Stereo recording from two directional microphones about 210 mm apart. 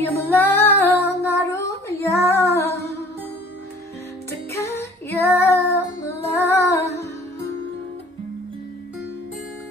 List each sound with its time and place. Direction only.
0.0 s female singing: 10° left (ahead or behind)
1.4 s child singing: 15° left (ahead or behind)
2.5 s music: 15° left (ahead or behind)
4.3 s music: 15° left (ahead or behind)